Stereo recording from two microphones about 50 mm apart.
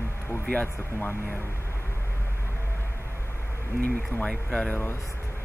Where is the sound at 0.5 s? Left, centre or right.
Left.